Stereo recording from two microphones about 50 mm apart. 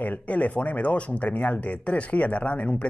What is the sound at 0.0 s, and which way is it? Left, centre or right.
Speech, left.